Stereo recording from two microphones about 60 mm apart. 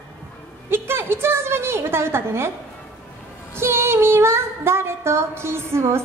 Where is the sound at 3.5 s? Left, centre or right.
Right.